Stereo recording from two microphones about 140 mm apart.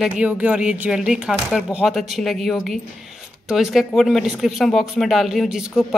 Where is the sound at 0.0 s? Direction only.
10° right (ahead or behind).